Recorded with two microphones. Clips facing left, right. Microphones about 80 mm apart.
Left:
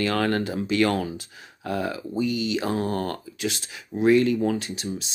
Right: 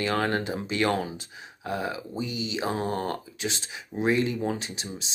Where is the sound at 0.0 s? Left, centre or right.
Centre.